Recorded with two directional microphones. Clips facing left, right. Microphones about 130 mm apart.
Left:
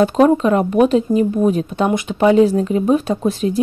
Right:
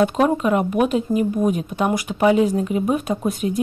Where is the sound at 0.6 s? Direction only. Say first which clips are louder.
Left 5 dB; 30° left (ahead or behind).